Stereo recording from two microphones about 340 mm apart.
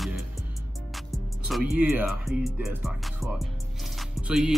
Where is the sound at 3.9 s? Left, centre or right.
Centre.